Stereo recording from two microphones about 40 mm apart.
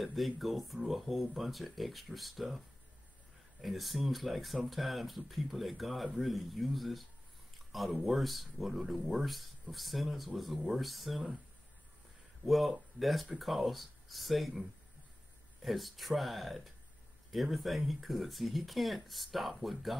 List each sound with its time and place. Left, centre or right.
0.0 s speech: centre
3.6 s speech: centre
12.4 s speech: centre
15.6 s speech: centre